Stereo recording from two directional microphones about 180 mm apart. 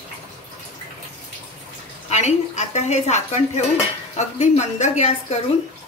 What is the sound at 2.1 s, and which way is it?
A woman's voice, 40° left (ahead or behind).